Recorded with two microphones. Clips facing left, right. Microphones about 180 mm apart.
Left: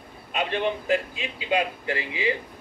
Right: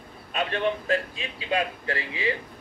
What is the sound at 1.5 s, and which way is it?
Speech, 20° left (ahead or behind).